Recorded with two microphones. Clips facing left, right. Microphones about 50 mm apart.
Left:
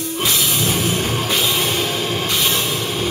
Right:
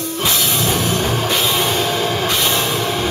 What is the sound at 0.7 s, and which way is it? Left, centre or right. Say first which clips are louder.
Music: right 2 dB; right.